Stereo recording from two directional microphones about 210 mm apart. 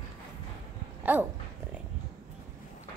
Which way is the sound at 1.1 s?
10° right (ahead or behind).